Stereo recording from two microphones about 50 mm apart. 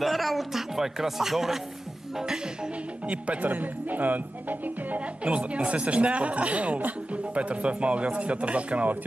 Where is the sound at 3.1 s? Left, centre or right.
Right.